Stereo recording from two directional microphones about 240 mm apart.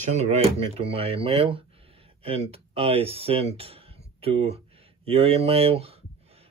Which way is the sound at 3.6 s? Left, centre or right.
Right.